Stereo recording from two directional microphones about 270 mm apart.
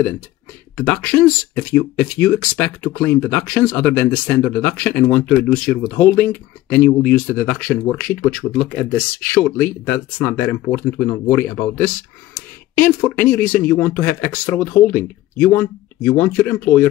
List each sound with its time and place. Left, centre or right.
0.7 s speech: centre